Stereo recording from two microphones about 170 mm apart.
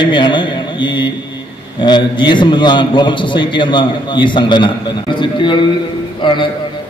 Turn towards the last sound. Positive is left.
turn(degrees=25)  # may be behind; listen again after turning